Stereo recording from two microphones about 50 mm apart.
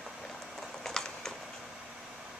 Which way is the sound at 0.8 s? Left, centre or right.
Centre.